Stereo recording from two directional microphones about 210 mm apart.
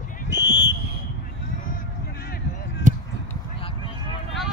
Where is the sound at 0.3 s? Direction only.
55° left (ahead or behind).